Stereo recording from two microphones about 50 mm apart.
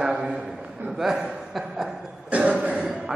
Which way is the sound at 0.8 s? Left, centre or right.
Centre.